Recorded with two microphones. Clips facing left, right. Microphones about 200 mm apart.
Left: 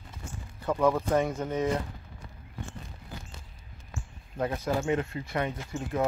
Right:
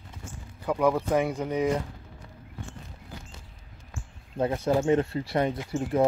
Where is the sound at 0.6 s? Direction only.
10° right (ahead or behind).